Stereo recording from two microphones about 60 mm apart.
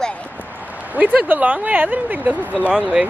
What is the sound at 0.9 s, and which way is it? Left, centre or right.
Speech, right.